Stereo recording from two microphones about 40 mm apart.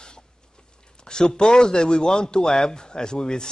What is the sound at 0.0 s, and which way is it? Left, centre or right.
A man's voice, centre.